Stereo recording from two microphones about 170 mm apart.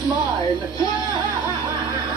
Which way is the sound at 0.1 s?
25° right (ahead or behind).